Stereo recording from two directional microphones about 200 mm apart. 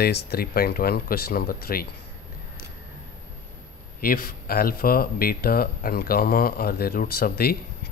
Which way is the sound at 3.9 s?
45° left (ahead or behind).